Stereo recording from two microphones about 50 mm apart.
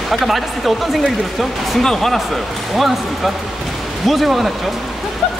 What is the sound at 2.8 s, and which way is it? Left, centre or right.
Speech, centre.